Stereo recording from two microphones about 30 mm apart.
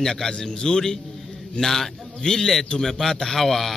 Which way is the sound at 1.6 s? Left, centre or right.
Centre.